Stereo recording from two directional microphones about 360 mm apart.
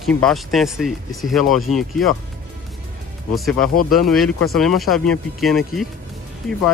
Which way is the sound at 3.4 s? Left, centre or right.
Centre.